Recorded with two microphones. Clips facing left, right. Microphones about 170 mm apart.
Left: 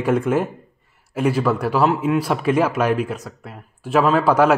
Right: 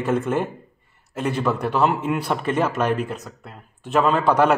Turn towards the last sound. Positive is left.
turn(degrees=5)  # may be behind; listen again after turning